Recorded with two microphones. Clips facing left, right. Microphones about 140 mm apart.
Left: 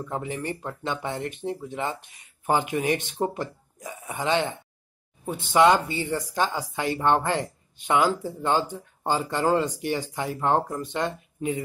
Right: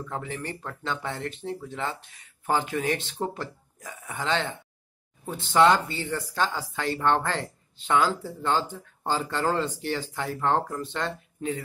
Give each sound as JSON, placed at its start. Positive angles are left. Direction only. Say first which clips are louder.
{"t": 0.0, "sound": "speech", "louder": "left 3 dB", "side_deg": 15}